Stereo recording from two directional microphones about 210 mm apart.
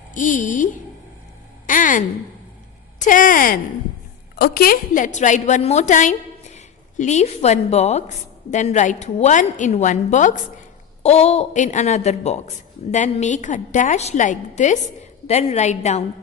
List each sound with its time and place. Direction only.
0.1 s a woman's voice: 35° left (ahead or behind)
1.7 s a woman's voice: 40° left (ahead or behind)